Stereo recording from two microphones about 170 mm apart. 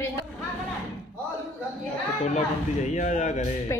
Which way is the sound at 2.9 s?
45° left (ahead or behind).